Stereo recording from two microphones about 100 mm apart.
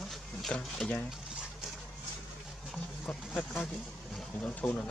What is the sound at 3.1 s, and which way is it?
Speech, 10° left (ahead or behind).